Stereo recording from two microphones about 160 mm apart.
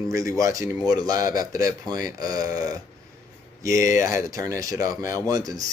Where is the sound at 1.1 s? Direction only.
60° left (ahead or behind).